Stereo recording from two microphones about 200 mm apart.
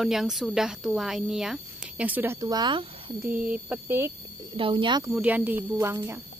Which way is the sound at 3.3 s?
5° right (ahead or behind).